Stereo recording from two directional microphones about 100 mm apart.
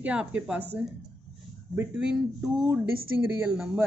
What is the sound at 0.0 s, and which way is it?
Speech, 15° right (ahead or behind).